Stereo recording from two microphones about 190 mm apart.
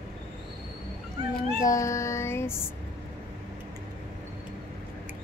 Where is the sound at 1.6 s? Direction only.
15° left (ahead or behind).